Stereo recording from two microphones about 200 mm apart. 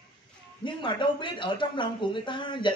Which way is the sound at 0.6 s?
25° left (ahead or behind).